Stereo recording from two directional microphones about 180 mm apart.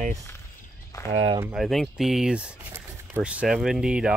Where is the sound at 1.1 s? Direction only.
30° right (ahead or behind).